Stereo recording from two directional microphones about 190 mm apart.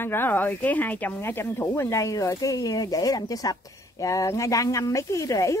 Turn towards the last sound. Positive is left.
turn(degrees=15)  # may be behind; listen again after turning